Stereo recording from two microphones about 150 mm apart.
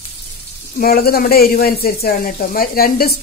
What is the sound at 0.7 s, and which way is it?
Speech, 90° left.